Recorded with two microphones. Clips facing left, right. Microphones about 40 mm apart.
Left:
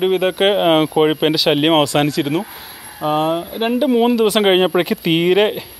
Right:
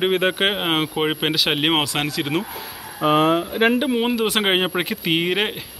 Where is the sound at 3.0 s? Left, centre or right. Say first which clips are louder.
Even; right.